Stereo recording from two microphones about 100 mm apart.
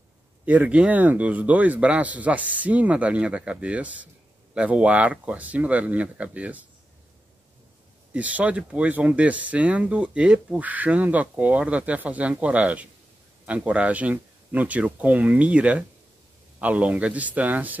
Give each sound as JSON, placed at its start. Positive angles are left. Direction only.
{"t": 0.5, "sound": "speech", "side_deg": -15}
{"t": 8.1, "sound": "speech", "side_deg": -15}